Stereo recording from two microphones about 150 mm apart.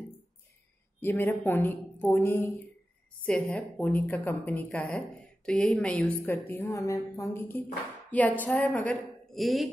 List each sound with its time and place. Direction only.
1.0 s a woman's voice: 15° left (ahead or behind)
3.3 s a woman's voice: 5° left (ahead or behind)